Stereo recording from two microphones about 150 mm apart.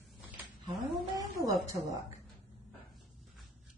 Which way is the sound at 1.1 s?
25° right (ahead or behind).